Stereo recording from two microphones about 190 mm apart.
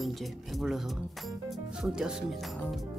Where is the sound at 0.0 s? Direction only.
Centre (ahead or behind).